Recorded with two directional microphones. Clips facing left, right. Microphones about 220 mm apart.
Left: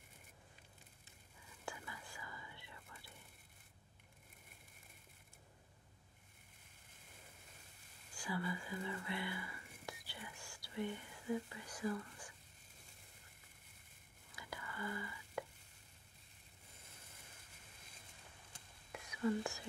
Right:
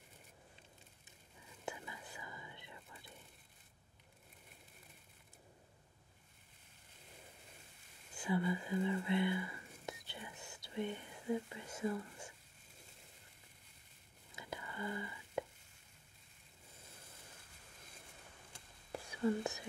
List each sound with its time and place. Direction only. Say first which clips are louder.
1.7 s whispering: right 3 dB; 20° right (ahead or behind)
8.1 s a sound: right 6 dB; 20° right (ahead or behind)
14.3 s whispering: right 3 dB; 20° right (ahead or behind)
18.9 s whispering: right 2 dB; 30° right (ahead or behind)